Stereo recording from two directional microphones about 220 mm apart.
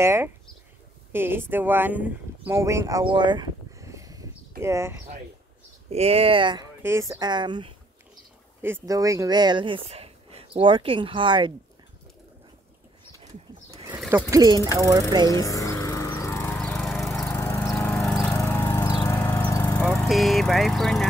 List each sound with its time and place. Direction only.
0.0 s speech: 10° right (ahead or behind)
5.9 s speech: 25° right (ahead or behind)
13.7 s a sound: 15° right (ahead or behind)
14.3 s speech: 15° right (ahead or behind)
15.2 s a sound: 15° left (ahead or behind)
17.3 s lawn mower: 10° left (ahead or behind)
18.3 s vehicle: 10° left (ahead or behind)